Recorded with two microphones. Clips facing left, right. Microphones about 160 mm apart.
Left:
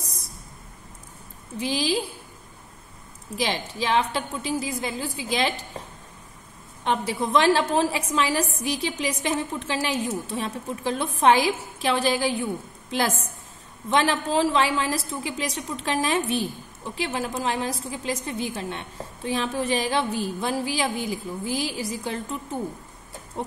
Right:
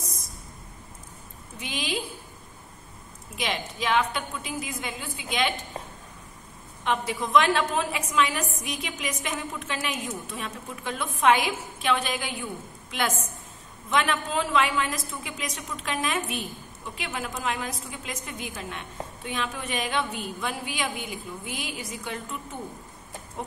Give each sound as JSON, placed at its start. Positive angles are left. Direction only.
{"t": 1.6, "sound": "a woman's voice", "side_deg": 35}
{"t": 3.3, "sound": "a woman's voice", "side_deg": 35}
{"t": 6.8, "sound": "a woman's voice", "side_deg": 35}
{"t": 13.8, "sound": "a woman's voice", "side_deg": 30}